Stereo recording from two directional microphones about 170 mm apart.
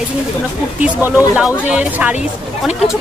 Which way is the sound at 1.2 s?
5° right (ahead or behind).